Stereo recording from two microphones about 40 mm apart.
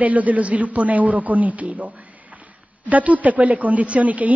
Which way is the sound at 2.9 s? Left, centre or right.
Right.